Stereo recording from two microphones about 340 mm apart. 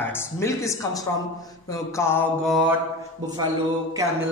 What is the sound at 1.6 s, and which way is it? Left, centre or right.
Mantra, centre.